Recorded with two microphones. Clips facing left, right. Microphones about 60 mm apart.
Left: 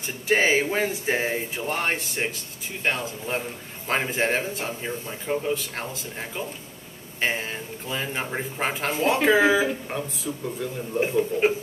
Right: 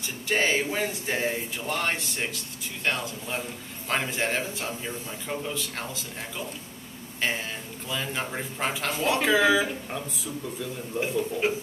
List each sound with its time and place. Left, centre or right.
0.3 s speech: left
7.2 s speech: left
10.6 s speech: left